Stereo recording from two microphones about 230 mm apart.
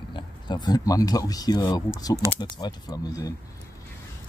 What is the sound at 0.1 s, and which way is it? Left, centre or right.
Speech, centre.